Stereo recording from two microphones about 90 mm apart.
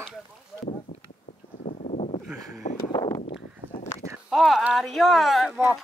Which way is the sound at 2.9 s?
45° left (ahead or behind).